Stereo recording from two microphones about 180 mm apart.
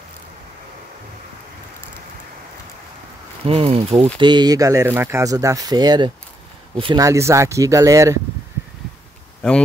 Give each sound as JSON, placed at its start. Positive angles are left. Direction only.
{"t": 3.4, "sound": "speech", "side_deg": -30}
{"t": 4.2, "sound": "speech", "side_deg": -25}
{"t": 7.1, "sound": "speech", "side_deg": -15}